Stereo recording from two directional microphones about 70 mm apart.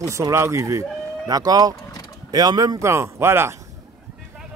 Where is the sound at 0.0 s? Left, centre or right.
Right.